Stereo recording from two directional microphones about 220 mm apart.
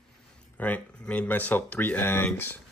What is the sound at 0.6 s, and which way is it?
Speech, 5° left (ahead or behind).